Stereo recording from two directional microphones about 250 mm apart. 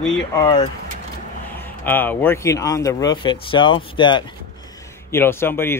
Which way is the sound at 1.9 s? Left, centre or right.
Centre.